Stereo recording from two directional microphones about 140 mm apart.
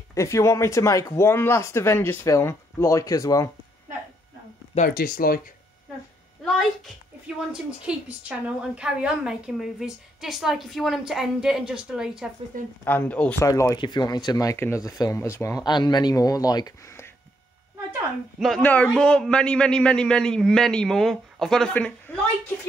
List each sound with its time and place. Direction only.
0.1 s speech: 20° left (ahead or behind)
4.7 s speech: 90° left
7.5 s a woman's voice: 5° right (ahead or behind)
12.8 s speech: 15° left (ahead or behind)
13.7 s speech: 30° left (ahead or behind)
15.6 s speech: 30° left (ahead or behind)
18.4 s a woman's voice: 5° left (ahead or behind)